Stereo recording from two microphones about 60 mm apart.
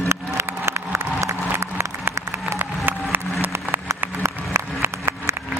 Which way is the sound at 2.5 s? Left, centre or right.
Right.